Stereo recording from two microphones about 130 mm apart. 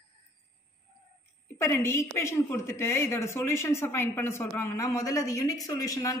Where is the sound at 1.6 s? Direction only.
20° left (ahead or behind).